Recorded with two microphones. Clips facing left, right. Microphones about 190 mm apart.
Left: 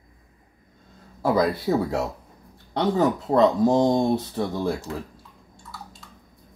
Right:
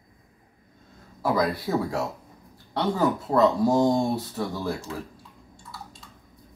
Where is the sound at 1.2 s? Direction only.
25° left (ahead or behind).